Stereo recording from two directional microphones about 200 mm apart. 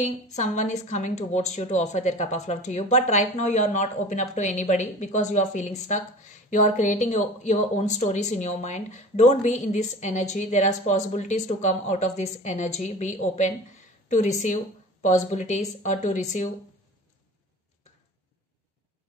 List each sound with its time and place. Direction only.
0.0 s speech: 35° left (ahead or behind)